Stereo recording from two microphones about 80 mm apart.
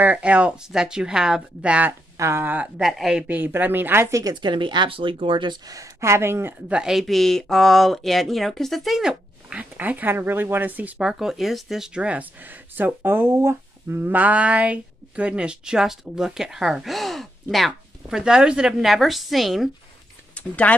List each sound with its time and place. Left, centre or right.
0.0 s speech: centre
2.1 s a woman's voice: right
2.8 s speech: centre
3.3 s a woman's voice: right
4.1 s speech: right
4.4 s speech: right
5.7 s a woman's voice: right
6.7 s speech: centre; by 11.0 s right
11.0 s speech: centre
20.3 s speech: centre